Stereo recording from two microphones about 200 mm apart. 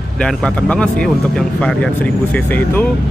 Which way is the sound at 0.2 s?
5° left (ahead or behind).